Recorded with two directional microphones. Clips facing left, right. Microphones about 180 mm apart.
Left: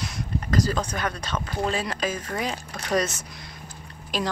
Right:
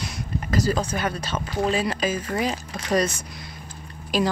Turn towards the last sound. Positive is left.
turn(degrees=-5)  # may be behind; listen again after turning